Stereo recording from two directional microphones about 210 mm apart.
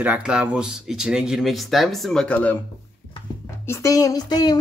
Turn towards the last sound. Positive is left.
turn(degrees=20)  # may be behind; listen again after turning